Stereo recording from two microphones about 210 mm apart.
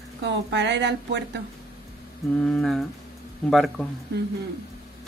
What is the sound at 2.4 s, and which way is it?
Speech, centre (ahead or behind).